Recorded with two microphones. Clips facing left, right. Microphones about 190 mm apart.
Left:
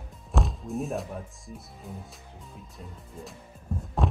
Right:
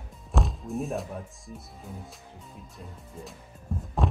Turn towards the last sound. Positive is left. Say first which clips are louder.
# even
turn(degrees=0)  # may be behind; listen again after turning